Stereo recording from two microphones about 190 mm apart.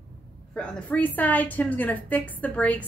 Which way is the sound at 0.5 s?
5° left (ahead or behind).